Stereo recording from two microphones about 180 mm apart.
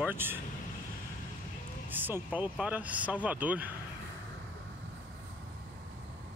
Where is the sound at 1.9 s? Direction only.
10° right (ahead or behind).